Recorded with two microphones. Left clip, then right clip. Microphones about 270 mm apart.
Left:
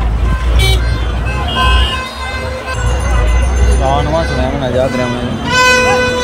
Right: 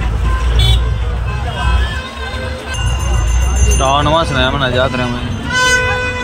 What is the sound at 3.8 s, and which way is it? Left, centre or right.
Speech, right.